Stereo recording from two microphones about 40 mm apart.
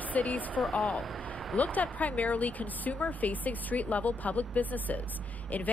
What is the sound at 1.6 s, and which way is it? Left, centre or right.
A woman's voice, left.